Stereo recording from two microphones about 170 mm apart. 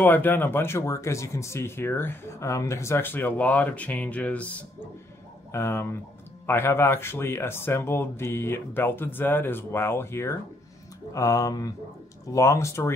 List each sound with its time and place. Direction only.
0.0 s speech: 10° left (ahead or behind)